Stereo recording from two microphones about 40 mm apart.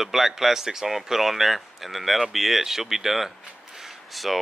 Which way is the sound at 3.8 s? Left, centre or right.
Centre.